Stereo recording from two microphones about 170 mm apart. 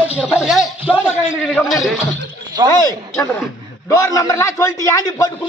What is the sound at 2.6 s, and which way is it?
A man's voice, 20° left (ahead or behind).